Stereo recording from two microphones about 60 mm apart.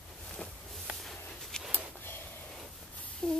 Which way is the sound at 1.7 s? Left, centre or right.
Left.